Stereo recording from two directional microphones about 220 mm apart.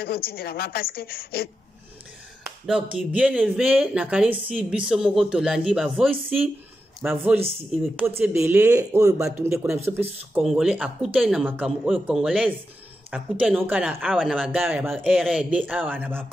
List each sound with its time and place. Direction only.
0.0 s a woman's voice: 45° left (ahead or behind)
2.4 s speech: 5° right (ahead or behind)